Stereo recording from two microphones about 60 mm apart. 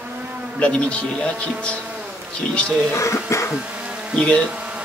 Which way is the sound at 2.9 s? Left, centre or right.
Left.